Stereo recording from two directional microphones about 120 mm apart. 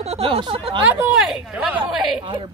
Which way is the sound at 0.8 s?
15° right (ahead or behind).